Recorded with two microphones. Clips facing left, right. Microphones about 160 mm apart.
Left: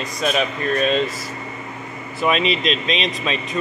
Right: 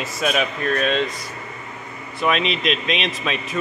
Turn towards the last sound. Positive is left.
turn(degrees=0)  # may be behind; listen again after turning